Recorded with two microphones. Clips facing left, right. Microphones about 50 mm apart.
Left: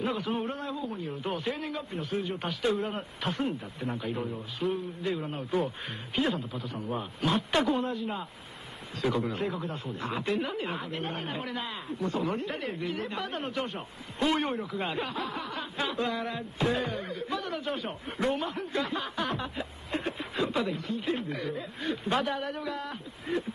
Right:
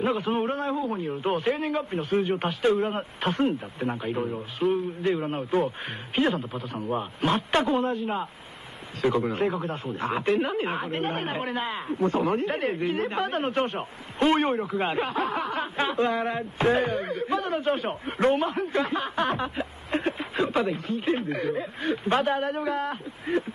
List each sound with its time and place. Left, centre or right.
0.0 s speech: right
1.0 s speech: right
4.6 s a man's voice: centre
5.2 s speech: right
9.2 s speech: right